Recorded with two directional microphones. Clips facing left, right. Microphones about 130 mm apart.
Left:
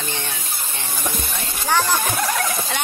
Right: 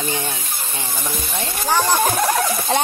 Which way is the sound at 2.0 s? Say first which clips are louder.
Right 5 dB; 30° right (ahead or behind).